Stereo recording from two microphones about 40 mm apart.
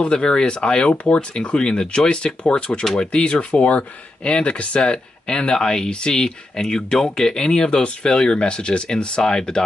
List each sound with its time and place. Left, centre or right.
0.0 s speech: left